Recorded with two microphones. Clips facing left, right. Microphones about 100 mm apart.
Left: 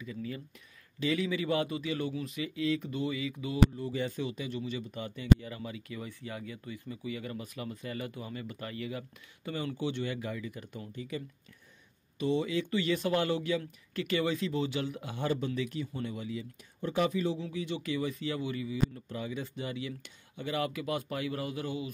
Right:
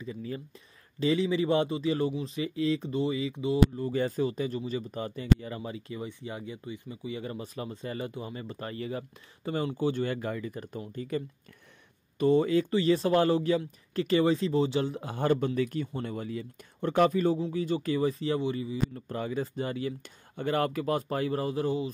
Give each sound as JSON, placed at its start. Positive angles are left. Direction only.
{"t": 0.0, "sound": "speech", "side_deg": -30}
{"t": 3.7, "sound": "speech", "side_deg": -45}
{"t": 19.0, "sound": "speech", "side_deg": -45}